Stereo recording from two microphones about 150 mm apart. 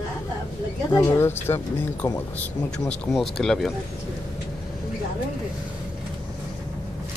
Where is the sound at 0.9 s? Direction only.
15° left (ahead or behind).